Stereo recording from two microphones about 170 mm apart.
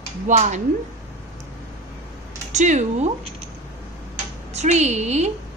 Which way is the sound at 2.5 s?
45° right (ahead or behind).